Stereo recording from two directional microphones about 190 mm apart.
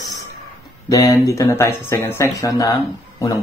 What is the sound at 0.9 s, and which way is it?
A man's voice, 15° left (ahead or behind).